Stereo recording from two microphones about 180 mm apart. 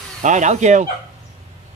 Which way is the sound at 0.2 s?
40° right (ahead or behind).